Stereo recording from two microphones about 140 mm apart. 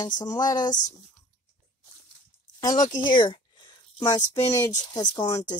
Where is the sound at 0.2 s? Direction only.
25° left (ahead or behind).